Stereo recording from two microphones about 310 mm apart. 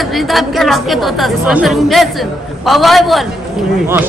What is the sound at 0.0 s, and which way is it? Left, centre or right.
Speech, centre.